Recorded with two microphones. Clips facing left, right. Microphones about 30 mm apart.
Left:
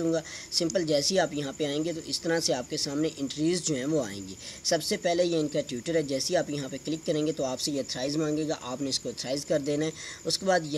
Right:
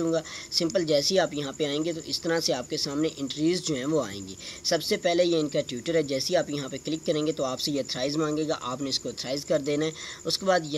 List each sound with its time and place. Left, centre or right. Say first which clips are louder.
0.0 s speech: right 1 dB; centre